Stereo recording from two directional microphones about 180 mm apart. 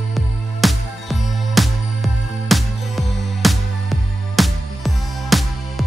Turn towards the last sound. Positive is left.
turn(degrees=0)  # may be behind; listen again after turning